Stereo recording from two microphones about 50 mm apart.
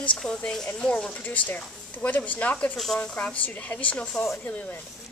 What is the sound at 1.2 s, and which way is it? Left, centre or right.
Speech, left.